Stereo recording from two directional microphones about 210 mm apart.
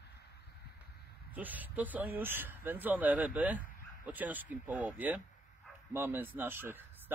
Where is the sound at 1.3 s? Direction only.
10° right (ahead or behind).